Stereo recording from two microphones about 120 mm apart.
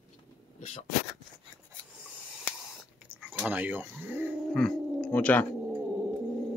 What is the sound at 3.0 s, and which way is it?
Speech, 10° right (ahead or behind).